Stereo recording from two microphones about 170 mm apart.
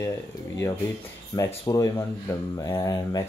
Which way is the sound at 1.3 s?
20° left (ahead or behind).